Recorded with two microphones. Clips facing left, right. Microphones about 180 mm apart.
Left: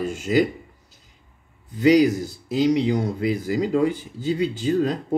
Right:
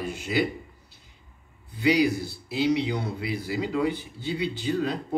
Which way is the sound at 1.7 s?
40° left (ahead or behind).